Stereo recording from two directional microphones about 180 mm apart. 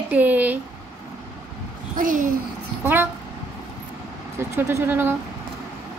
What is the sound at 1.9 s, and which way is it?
Speech, 50° right (ahead or behind).